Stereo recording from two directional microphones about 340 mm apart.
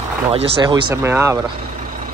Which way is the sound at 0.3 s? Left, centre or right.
Centre.